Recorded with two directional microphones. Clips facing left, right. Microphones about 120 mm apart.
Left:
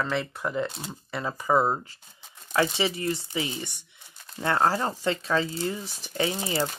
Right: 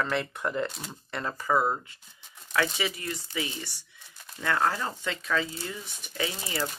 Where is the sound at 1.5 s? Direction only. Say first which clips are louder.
Left 3 dB; 25° left (ahead or behind).